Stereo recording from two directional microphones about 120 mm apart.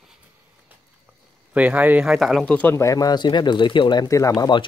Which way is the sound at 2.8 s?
30° left (ahead or behind).